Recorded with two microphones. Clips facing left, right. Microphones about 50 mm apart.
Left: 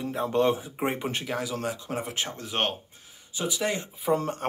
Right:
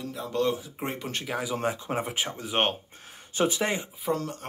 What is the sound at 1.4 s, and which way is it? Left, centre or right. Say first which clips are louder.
Speech: right 2 dB; right.